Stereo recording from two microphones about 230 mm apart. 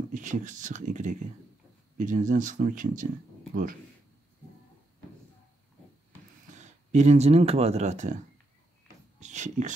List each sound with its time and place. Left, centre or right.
0.1 s speech: right
6.5 s speech: right
9.2 s speech: right